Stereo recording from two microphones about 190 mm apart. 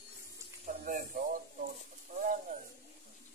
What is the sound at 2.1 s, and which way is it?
Bird, 45° right (ahead or behind).